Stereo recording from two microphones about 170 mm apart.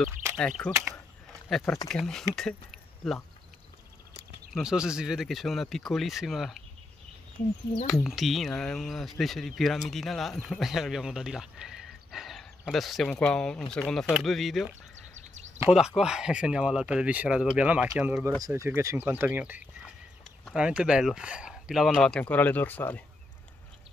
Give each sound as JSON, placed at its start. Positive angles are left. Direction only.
{"t": 0.1, "sound": "a sound", "side_deg": -15}
{"t": 0.6, "sound": "speech", "side_deg": 5}
{"t": 4.6, "sound": "speech", "side_deg": -5}
{"t": 8.0, "sound": "speech", "side_deg": 0}
{"t": 15.1, "sound": "a sound", "side_deg": -45}
{"t": 15.7, "sound": "speech", "side_deg": -5}